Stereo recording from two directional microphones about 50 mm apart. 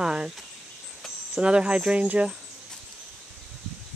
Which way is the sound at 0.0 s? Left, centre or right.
Centre.